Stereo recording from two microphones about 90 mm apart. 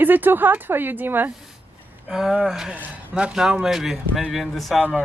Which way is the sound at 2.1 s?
5° right (ahead or behind).